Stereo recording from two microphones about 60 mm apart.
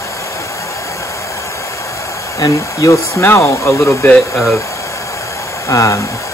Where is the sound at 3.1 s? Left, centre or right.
Left.